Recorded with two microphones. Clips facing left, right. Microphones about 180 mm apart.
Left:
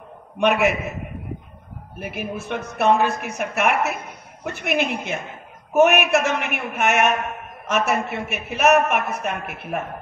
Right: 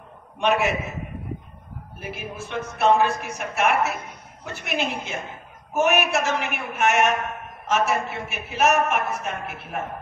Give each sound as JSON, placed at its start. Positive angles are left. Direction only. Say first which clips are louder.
{"t": 0.4, "sound": "a man's voice", "louder": "left 3 dB", "side_deg": 60}
{"t": 2.0, "sound": "a man's voice", "louder": "left 5 dB", "side_deg": 60}